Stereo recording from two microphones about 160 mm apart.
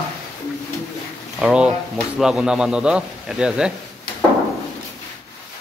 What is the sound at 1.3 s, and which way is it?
A man's voice, 5° right (ahead or behind).